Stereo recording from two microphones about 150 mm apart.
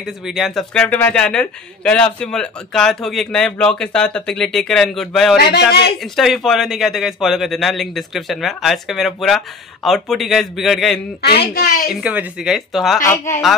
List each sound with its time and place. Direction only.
0.0 s speech: centre (ahead or behind)
5.4 s speech: 90° left
6.1 s speech: centre (ahead or behind)
11.2 s speech: 90° left
11.9 s speech: 10° right (ahead or behind)
13.0 s speech: 20° left (ahead or behind)